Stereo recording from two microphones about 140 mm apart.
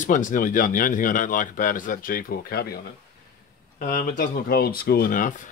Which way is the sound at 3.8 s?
70° left (ahead or behind).